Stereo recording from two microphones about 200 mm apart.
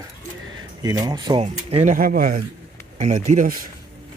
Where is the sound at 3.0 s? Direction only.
35° right (ahead or behind).